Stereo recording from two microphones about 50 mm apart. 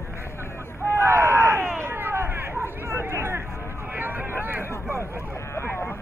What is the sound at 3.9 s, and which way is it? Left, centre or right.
Vehicle, right.